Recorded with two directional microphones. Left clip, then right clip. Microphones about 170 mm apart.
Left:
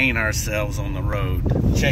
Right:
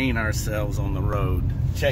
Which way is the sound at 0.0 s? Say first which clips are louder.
Left 5 dB; 25° right (ahead or behind).